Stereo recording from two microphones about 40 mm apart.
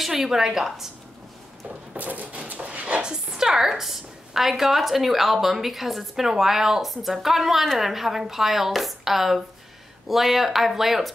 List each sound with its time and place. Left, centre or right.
0.0 s a woman's voice: centre
2.0 s a sound: right
3.0 s a woman's voice: centre